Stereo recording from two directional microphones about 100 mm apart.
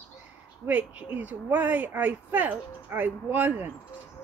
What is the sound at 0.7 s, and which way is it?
Speech, 15° right (ahead or behind).